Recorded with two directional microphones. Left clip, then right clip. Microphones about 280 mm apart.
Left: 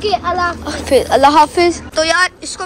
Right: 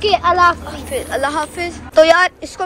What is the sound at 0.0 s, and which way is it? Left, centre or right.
Speech, right.